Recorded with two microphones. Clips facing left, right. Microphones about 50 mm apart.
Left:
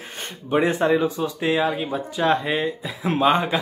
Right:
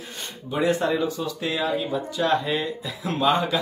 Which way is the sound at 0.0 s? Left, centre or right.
Left.